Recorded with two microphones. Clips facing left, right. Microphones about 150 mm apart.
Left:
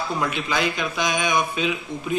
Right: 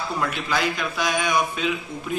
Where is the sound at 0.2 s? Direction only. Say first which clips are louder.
Even; 20° left (ahead or behind).